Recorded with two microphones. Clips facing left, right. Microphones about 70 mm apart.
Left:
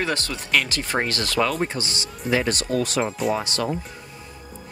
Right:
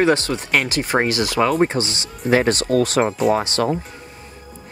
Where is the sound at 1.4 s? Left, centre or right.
Right.